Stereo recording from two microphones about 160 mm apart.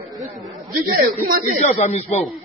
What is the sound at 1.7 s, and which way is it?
Speech, 45° left (ahead or behind).